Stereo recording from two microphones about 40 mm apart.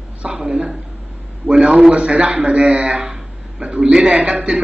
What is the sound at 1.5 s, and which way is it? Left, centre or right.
Speech, right.